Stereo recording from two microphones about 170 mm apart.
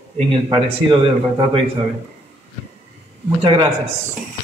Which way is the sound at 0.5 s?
30° right (ahead or behind).